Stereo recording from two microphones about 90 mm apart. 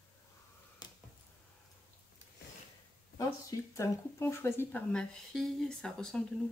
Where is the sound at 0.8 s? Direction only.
50° left (ahead or behind).